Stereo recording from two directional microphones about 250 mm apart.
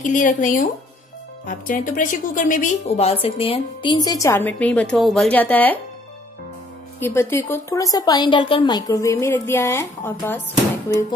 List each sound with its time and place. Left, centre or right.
0.0 s a woman's voice: left; by 5.8 s centre
7.0 s a woman's voice: centre